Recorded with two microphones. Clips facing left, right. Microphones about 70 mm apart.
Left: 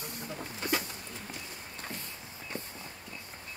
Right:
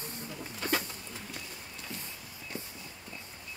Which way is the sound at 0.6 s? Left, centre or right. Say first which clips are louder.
Even; right.